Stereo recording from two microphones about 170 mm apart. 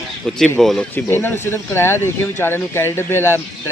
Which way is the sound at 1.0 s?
15° left (ahead or behind).